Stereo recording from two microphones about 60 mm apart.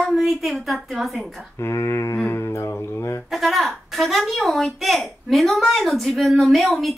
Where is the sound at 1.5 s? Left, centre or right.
Left.